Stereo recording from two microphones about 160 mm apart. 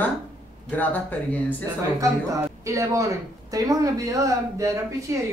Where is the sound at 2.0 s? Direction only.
20° right (ahead or behind).